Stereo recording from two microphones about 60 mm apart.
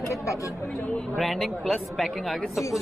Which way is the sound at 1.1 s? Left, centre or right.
Centre.